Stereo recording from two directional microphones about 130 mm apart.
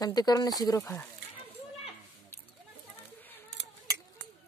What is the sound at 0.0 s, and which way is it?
Speech, 30° left (ahead or behind).